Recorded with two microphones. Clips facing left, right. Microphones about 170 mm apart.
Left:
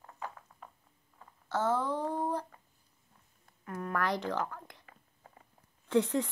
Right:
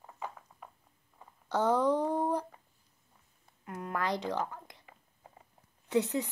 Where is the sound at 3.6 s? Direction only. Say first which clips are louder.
Left 1 dB; 20° right (ahead or behind).